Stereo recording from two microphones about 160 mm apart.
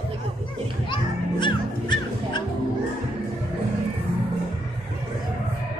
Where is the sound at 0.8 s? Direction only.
30° left (ahead or behind).